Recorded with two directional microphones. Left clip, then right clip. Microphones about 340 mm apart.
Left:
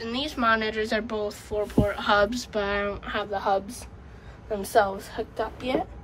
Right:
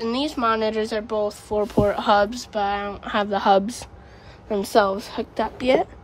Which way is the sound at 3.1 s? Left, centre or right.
Right.